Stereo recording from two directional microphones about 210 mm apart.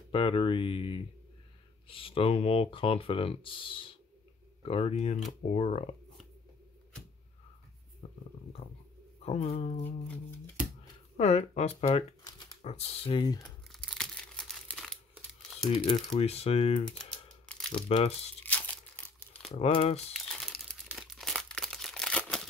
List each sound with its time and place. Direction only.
0.1 s speech: 25° left (ahead or behind)
8.0 s a sound: 30° left (ahead or behind)
9.2 s speech: 30° left (ahead or behind)
9.8 s music: 10° left (ahead or behind)
11.1 s speech: 30° left (ahead or behind)
13.7 s crumpling: centre (ahead or behind)
15.7 s speech: 30° left (ahead or behind)
17.5 s crumpling: 5° left (ahead or behind)
17.7 s speech: 30° left (ahead or behind)
19.0 s crumpling: 10° left (ahead or behind)
19.5 s speech: 30° left (ahead or behind)
20.3 s crumpling: centre (ahead or behind)